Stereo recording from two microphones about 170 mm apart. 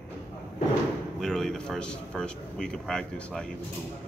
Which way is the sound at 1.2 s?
5° left (ahead or behind).